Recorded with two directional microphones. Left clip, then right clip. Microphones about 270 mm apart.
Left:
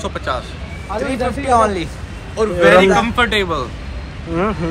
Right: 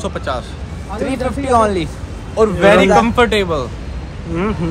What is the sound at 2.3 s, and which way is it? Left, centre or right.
A man's voice, right.